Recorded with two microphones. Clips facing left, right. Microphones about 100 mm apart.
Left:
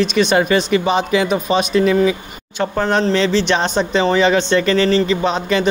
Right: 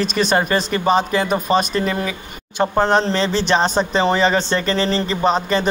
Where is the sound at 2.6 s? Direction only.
20° right (ahead or behind).